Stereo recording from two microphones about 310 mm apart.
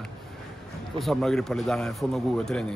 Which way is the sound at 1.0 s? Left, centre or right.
Centre.